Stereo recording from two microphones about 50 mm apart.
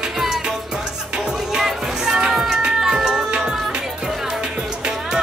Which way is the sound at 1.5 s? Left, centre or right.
Centre.